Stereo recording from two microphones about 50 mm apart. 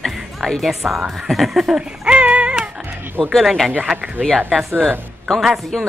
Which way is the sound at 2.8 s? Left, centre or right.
Right.